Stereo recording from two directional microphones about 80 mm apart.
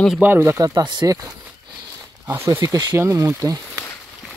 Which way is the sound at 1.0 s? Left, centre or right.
Right.